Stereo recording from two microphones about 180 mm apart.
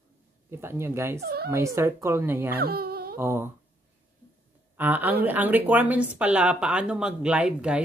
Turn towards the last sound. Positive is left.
turn(degrees=-5)  # may be behind; listen again after turning